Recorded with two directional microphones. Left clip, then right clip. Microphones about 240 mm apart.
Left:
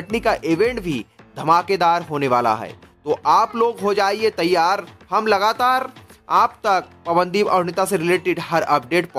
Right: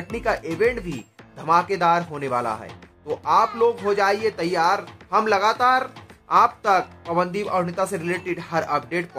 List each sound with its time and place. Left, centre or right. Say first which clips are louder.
0.1 s speech: left 6 dB; left